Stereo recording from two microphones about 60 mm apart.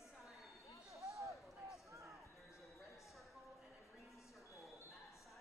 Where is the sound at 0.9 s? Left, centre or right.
Right.